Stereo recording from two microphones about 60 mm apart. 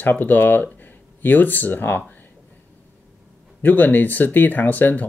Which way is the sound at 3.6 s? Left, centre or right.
Left.